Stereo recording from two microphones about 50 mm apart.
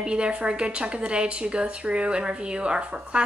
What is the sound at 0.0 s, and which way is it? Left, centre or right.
A woman's voice, centre.